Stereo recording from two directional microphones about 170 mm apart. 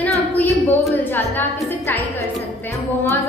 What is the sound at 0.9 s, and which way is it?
Music, 10° left (ahead or behind).